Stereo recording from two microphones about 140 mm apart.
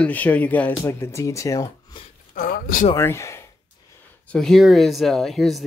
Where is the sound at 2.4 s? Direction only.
90° left.